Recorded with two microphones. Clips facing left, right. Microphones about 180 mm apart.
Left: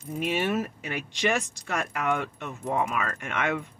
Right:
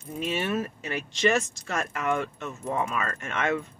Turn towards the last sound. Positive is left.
turn(degrees=15)  # may be behind; listen again after turning